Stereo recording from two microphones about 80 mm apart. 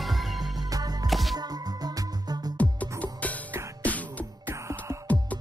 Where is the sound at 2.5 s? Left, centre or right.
Centre.